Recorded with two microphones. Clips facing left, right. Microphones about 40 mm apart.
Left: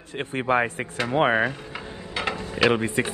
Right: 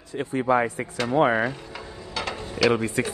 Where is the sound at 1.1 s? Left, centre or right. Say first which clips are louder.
Even; left.